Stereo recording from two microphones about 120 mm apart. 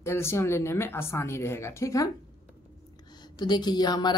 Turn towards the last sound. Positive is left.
turn(degrees=35)  # may be behind; listen again after turning